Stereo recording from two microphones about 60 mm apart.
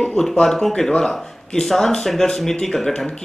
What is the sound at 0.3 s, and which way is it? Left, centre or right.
Speech, centre.